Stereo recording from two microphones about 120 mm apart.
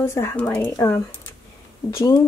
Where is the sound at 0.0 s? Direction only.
20° left (ahead or behind).